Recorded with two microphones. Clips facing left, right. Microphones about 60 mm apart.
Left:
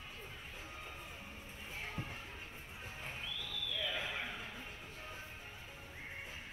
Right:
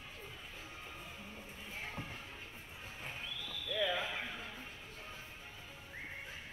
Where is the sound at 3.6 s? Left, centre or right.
Right.